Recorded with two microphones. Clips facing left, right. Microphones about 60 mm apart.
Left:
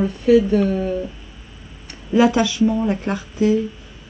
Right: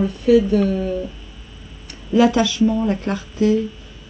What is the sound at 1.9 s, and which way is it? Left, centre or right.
A woman's voice, left.